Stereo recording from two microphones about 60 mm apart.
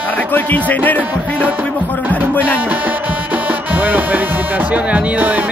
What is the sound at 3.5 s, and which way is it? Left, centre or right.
Music, right.